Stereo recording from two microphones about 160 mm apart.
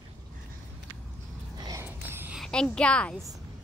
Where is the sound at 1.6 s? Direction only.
25° right (ahead or behind).